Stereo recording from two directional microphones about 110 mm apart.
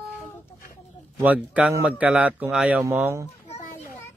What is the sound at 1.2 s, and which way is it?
Speech, 10° right (ahead or behind).